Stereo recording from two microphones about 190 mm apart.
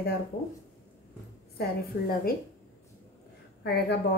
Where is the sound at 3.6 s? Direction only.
60° left (ahead or behind).